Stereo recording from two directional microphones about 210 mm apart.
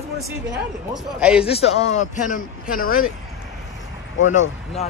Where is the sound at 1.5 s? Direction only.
30° left (ahead or behind).